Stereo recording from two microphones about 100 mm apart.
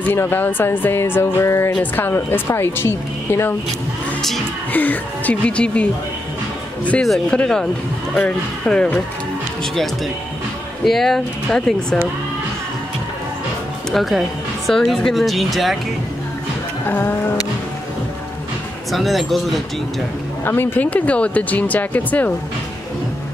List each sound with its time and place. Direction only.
0.1 s a woman's voice: 20° left (ahead or behind)
4.7 s speech: 15° left (ahead or behind)
10.9 s speech: centre (ahead or behind)
13.9 s speech: centre (ahead or behind)
16.8 s a woman's voice: 20° left (ahead or behind)
18.9 s speech: centre (ahead or behind)
20.4 s speech: 20° left (ahead or behind)